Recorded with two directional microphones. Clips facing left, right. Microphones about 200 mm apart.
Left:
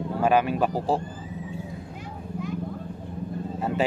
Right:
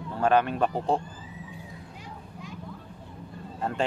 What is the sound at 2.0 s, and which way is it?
Vehicle, 55° left (ahead or behind).